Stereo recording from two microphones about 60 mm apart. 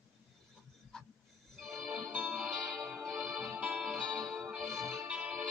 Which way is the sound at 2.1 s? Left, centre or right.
Centre.